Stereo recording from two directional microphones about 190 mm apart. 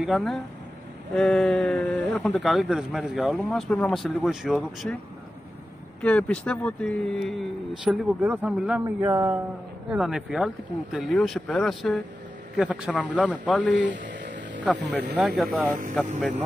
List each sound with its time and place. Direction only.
0.0 s speech: centre (ahead or behind)
5.9 s speech: 5° left (ahead or behind)
8.8 s speech: 15° right (ahead or behind)
9.8 s speech: 5° right (ahead or behind)
13.5 s speech: 5° left (ahead or behind)
13.9 s a sound: 70° right (ahead or behind)
15.1 s speech: 5° right (ahead or behind)